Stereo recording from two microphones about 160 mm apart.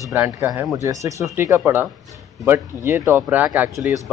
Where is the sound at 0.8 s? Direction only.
20° right (ahead or behind).